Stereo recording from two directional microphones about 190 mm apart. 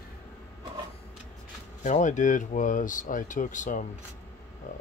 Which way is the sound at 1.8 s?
40° left (ahead or behind).